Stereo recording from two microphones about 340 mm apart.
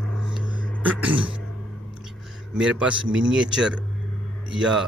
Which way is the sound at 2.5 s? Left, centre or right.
Centre.